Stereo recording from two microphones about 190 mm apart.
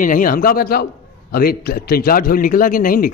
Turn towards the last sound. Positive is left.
turn(degrees=45)  # may be behind; listen again after turning